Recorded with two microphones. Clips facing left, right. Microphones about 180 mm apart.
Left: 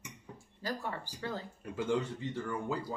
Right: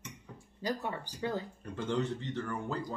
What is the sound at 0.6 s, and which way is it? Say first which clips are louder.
Speech: right 3 dB; 15° right (ahead or behind).